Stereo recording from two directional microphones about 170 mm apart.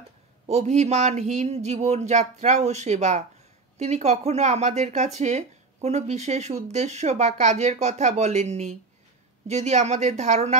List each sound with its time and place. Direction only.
0.5 s speech: 40° right (ahead or behind)